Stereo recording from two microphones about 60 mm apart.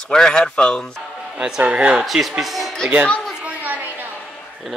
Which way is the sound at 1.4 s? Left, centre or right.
Centre.